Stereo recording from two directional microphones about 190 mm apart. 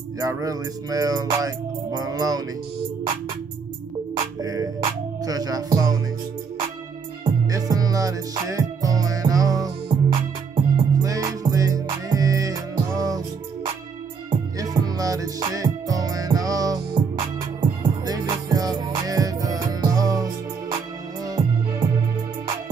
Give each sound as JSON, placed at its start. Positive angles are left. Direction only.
{"t": 0.2, "sound": "music", "side_deg": -15}
{"t": 4.4, "sound": "music", "side_deg": -20}
{"t": 7.2, "sound": "music", "side_deg": -20}
{"t": 11.0, "sound": "music", "side_deg": -15}
{"t": 14.6, "sound": "music", "side_deg": -20}